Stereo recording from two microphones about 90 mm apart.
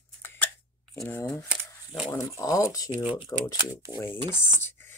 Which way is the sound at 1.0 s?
20° left (ahead or behind).